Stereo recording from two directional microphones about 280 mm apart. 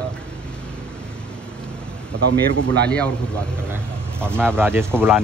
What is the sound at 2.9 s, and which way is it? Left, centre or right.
Speech, centre.